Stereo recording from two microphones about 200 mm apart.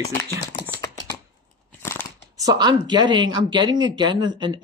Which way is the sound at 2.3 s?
20° right (ahead or behind).